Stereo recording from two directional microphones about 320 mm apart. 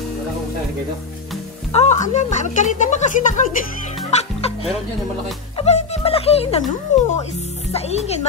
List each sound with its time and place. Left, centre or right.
1.7 s speech: left
4.1 s chicken: centre
5.6 s speech: centre